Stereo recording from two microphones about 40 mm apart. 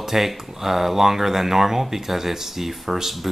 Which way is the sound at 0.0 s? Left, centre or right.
Centre.